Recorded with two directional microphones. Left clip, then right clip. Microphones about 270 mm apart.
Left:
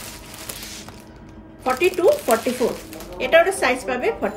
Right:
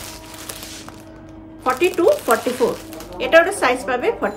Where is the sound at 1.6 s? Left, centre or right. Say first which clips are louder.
Right 1 dB; centre.